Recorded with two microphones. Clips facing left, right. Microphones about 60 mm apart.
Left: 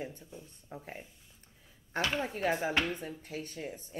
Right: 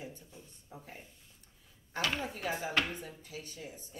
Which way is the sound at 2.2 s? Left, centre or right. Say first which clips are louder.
Left 5 dB; left.